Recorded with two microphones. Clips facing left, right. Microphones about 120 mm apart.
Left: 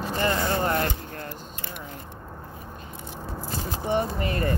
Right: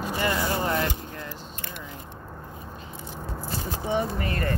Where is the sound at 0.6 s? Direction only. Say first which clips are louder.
Left 1 dB; 45° left (ahead or behind).